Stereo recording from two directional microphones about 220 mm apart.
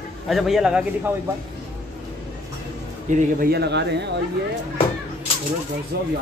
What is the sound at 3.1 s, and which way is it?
Speech, 35° right (ahead or behind).